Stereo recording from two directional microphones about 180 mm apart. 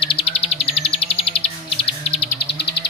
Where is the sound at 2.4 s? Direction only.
65° left (ahead or behind).